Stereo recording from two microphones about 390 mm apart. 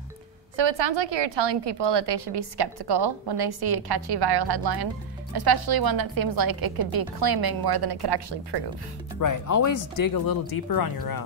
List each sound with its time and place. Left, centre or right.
0.6 s a woman's voice: right
9.2 s speech: left